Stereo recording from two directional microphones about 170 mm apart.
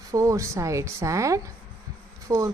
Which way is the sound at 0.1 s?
20° right (ahead or behind).